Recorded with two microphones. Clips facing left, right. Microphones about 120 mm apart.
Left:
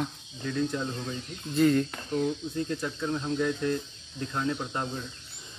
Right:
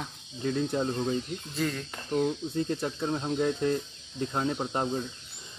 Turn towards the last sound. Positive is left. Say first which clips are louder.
# right 4 dB
turn(degrees=-25)  # may be behind; listen again after turning